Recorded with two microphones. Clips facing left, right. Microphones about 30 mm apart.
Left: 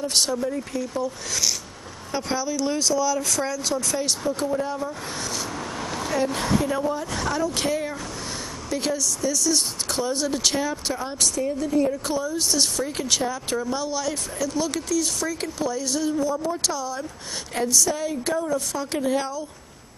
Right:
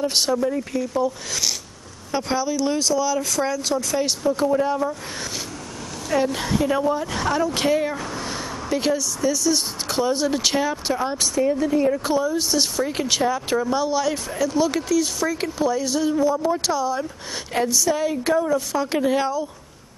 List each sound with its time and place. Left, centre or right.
0.0 s speech: centre
6.2 s a woman's voice: centre